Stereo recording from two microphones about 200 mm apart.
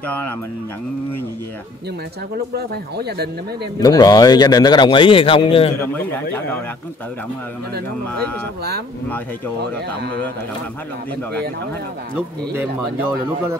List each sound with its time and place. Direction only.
2.3 s speech: 50° right (ahead or behind)
3.8 s a man's voice: 20° left (ahead or behind)
5.8 s speech: 10° left (ahead or behind)